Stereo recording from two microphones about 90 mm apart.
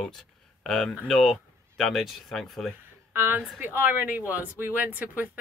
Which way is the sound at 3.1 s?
25° right (ahead or behind).